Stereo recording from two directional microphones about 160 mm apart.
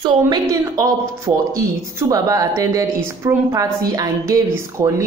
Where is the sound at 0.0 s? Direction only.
25° right (ahead or behind).